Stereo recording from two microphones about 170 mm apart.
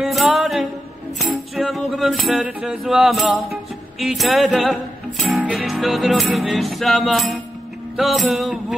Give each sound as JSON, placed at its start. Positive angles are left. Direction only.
{"t": 0.0, "sound": "music", "side_deg": 0}